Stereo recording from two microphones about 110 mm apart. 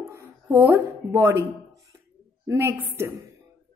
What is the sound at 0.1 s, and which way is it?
Speech, 25° right (ahead or behind).